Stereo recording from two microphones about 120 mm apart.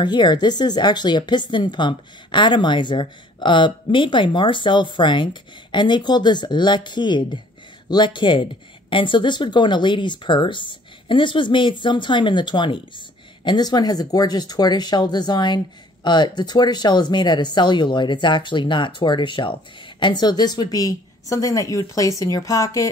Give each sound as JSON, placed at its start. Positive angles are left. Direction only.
{"t": 0.0, "sound": "a woman's voice", "side_deg": 40}